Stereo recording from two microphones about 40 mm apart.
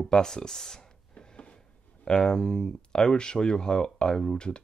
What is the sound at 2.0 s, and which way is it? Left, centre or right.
Speech, centre.